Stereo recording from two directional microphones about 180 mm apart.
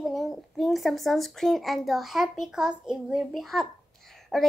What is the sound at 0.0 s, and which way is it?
A child's voice, centre (ahead or behind).